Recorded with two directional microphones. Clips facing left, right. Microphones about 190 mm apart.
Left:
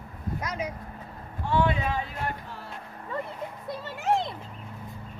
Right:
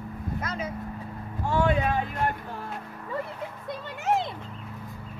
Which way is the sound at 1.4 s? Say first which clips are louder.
Right 1 dB; 45° right (ahead or behind).